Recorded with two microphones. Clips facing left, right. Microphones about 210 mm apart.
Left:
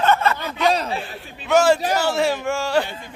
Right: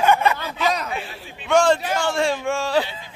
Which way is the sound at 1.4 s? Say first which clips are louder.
Left 1 dB; 5° left (ahead or behind).